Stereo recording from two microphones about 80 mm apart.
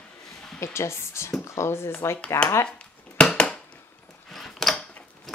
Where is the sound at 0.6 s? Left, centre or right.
Left.